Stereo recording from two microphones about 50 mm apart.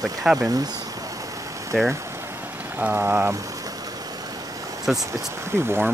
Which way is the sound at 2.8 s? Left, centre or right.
Right.